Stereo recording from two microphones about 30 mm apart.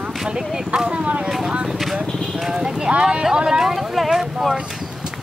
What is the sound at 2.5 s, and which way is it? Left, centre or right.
Speech, right.